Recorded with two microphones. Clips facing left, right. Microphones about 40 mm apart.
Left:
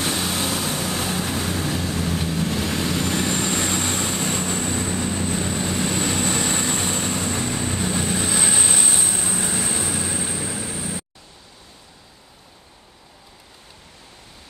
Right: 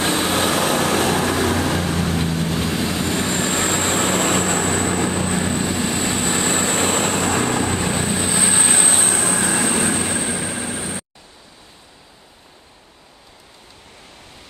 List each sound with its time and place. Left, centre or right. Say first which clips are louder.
0.0 s vehicle: right 5 dB; right
2.7 s vehicle: right 2 dB; centre; by 5.5 s right
5.7 s vehicle: right 2 dB; centre; by 7.9 s right
8.1 s train: right 2 dB; centre
8.6 s train: right 4 dB; right
9.1 s train: right 6 dB; right